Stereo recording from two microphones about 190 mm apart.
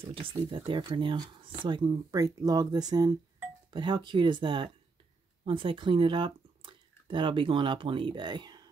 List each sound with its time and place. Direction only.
0.0 s speech: 25° right (ahead or behind)